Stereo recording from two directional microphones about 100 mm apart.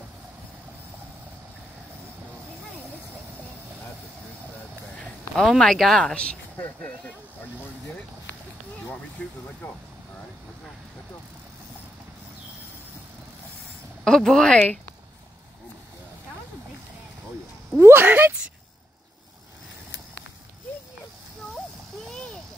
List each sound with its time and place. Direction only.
4.9 s a sound: 5° left (ahead or behind)
5.6 s speech: 5° left (ahead or behind)
9.2 s speech: 10° left (ahead or behind)
14.0 s speech: 5° left (ahead or behind)
17.7 s speech: 20° right (ahead or behind)